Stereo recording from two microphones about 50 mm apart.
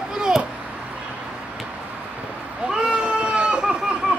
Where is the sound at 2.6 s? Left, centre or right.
Centre.